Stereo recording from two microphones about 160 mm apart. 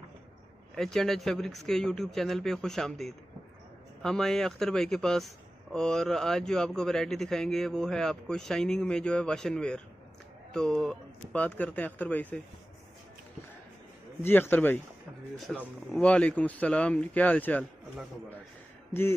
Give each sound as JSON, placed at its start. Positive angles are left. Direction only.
{"t": 0.7, "sound": "a man's voice", "side_deg": 0}
{"t": 14.2, "sound": "speech", "side_deg": 15}
{"t": 15.3, "sound": "speech", "side_deg": 0}